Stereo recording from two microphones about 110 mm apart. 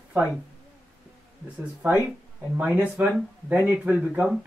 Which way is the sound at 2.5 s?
15° right (ahead or behind).